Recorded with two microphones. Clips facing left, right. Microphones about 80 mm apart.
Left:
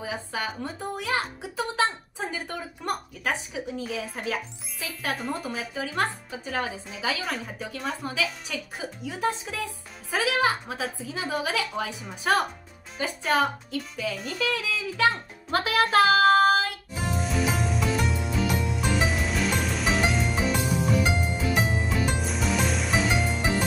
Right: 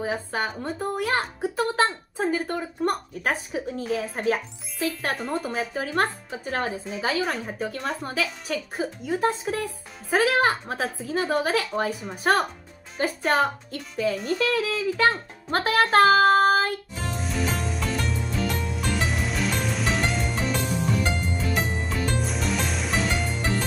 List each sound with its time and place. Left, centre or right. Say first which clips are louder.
0.0 s speech: right 4 dB; right
5.1 s speech: right 3 dB; centre
5.5 s speech: right 4 dB; right
16.9 s music: left 2 dB; centre